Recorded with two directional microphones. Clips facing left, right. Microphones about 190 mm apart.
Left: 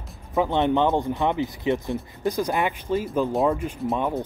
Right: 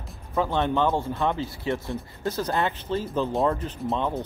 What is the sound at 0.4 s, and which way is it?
Speech, 20° left (ahead or behind).